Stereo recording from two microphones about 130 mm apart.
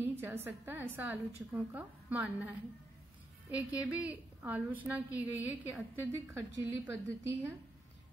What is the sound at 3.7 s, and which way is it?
A woman's voice, 10° right (ahead or behind).